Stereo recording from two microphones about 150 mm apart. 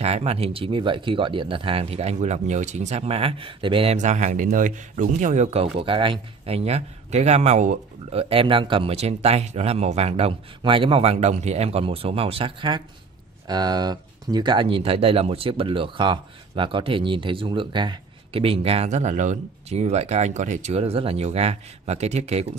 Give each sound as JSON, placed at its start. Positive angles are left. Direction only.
{"t": 0.0, "sound": "speech", "side_deg": -45}
{"t": 3.9, "sound": "speech", "side_deg": -55}